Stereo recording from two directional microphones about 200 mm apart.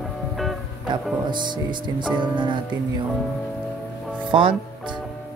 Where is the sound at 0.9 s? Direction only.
25° right (ahead or behind).